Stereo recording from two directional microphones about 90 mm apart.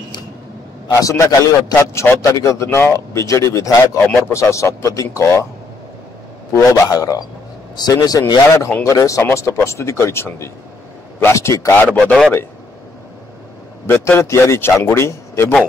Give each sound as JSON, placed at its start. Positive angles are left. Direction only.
{"t": 0.9, "sound": "a man's voice", "side_deg": 40}
{"t": 6.5, "sound": "a man's voice", "side_deg": 40}
{"t": 11.7, "sound": "a man's voice", "side_deg": 20}
{"t": 12.0, "sound": "a man's voice", "side_deg": 0}
{"t": 13.8, "sound": "a man's voice", "side_deg": 25}